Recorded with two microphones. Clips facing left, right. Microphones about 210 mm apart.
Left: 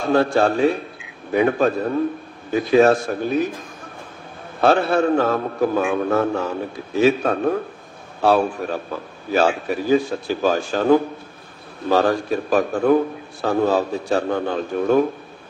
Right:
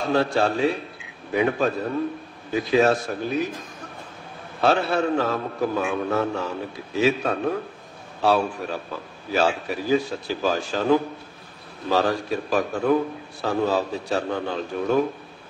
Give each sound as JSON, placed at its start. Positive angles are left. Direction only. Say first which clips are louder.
{"t": 0.1, "sound": "a man's voice", "louder": "left 5 dB", "side_deg": 50}
{"t": 4.6, "sound": "a man's voice", "louder": "left 4 dB", "side_deg": 50}